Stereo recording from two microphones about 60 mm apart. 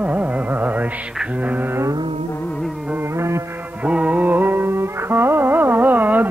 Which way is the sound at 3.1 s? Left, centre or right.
Right.